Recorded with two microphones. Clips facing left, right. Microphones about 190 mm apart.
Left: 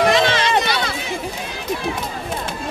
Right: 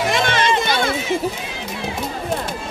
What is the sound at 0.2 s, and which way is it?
Run, 50° right (ahead or behind).